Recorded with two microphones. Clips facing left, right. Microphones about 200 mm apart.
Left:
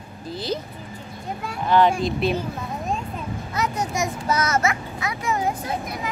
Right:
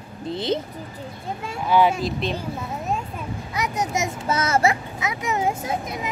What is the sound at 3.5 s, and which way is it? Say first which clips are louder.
A child's voice: even; 20° right (ahead or behind).